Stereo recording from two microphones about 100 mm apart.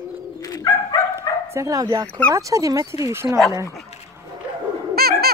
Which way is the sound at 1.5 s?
35° right (ahead or behind).